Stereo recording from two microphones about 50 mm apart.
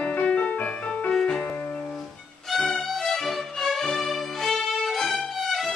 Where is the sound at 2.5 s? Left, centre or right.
Centre.